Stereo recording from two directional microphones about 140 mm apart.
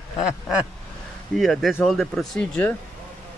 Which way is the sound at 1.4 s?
Centre (ahead or behind).